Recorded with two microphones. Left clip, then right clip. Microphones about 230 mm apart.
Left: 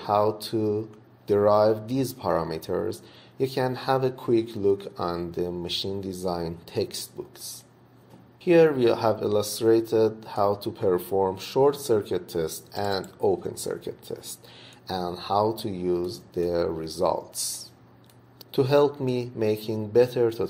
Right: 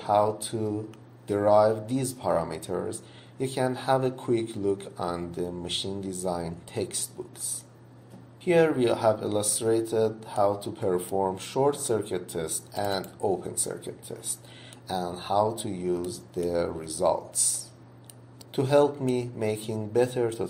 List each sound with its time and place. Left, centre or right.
0.0 s speech: left
8.5 s speech: left
18.5 s speech: left